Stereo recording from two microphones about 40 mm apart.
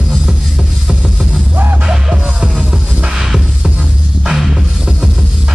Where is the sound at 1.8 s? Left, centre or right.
Right.